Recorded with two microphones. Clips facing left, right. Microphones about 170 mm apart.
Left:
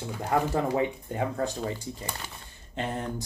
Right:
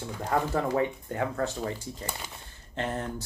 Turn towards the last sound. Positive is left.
turn(degrees=15)  # may be behind; listen again after turning